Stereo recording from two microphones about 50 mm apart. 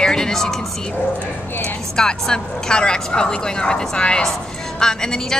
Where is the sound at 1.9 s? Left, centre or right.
Centre.